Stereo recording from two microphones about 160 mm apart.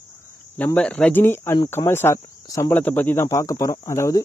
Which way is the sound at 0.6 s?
10° left (ahead or behind).